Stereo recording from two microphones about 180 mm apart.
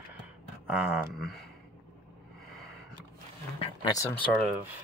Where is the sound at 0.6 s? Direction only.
5° right (ahead or behind).